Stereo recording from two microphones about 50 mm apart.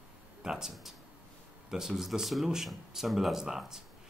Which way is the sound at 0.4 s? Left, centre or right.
Centre.